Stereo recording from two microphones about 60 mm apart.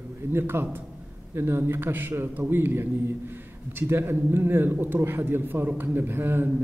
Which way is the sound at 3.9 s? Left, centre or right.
Right.